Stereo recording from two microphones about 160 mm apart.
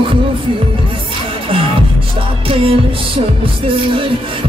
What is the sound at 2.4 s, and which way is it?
Music, 35° right (ahead or behind).